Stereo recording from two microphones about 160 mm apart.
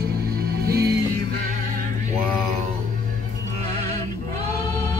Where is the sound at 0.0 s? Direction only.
75° right (ahead or behind).